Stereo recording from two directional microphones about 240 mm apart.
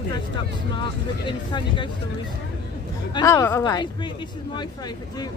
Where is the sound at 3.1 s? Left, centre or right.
Centre.